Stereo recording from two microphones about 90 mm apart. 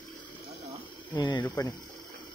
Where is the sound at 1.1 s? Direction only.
50° left (ahead or behind).